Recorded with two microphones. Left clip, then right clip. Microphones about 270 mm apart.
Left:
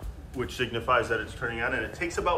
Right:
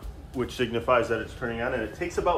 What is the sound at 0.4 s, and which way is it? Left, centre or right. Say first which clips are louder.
Speech: right 2 dB; right.